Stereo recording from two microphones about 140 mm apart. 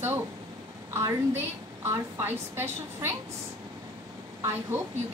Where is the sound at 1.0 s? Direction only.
20° right (ahead or behind).